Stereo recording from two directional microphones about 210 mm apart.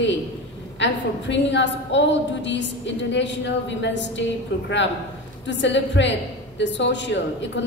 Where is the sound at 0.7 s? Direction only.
60° left (ahead or behind).